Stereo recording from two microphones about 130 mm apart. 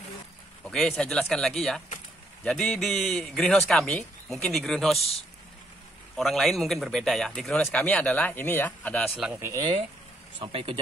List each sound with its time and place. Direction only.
0.7 s speech: centre (ahead or behind)
6.1 s speech: centre (ahead or behind)
9.3 s speech: 20° right (ahead or behind)
10.4 s speech: 45° right (ahead or behind)